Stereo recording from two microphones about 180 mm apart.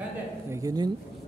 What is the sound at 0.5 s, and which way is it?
Speech, 20° right (ahead or behind).